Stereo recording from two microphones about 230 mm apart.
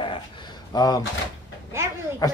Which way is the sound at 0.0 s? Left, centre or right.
Centre.